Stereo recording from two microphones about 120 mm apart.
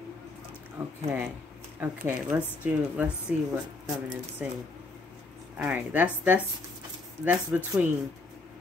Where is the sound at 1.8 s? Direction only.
10° right (ahead or behind).